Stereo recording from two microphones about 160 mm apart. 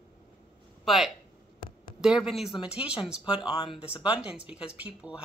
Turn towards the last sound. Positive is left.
turn(degrees=-5)  # may be behind; listen again after turning